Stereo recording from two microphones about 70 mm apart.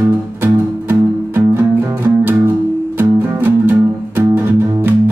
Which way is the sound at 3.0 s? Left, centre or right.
Right.